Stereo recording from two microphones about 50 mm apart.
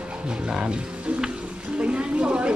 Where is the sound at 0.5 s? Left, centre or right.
Centre.